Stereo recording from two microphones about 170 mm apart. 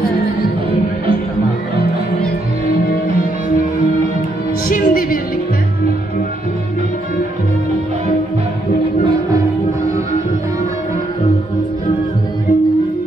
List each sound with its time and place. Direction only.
4.6 s music: 55° left (ahead or behind)